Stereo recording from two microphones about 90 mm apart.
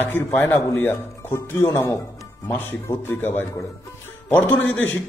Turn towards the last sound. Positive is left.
turn(degrees=20)  # may be behind; listen again after turning